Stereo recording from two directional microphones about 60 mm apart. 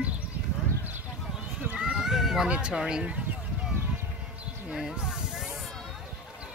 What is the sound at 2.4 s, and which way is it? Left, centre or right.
Speech, centre.